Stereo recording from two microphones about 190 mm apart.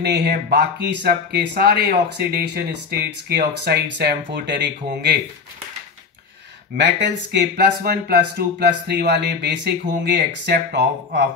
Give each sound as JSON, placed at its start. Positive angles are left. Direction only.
{"t": 0.0, "sound": "speech", "side_deg": -55}
{"t": 6.8, "sound": "speech", "side_deg": -65}